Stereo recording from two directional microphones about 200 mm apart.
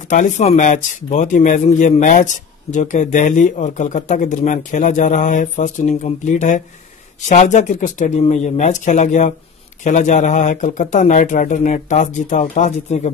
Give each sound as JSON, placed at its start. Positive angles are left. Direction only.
{"t": 0.1, "sound": "speech", "side_deg": 35}